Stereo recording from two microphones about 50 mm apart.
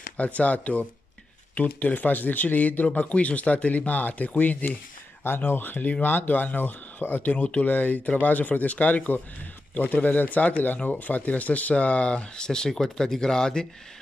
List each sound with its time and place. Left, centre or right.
0.2 s speech: left
5.2 s speech: left; by 13.7 s centre